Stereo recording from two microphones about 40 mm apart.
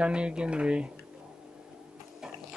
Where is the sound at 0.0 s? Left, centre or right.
Right.